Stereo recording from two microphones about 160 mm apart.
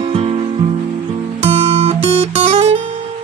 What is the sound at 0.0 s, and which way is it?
Music, 40° right (ahead or behind).